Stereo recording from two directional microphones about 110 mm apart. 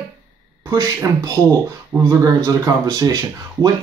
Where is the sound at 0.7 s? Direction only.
25° right (ahead or behind).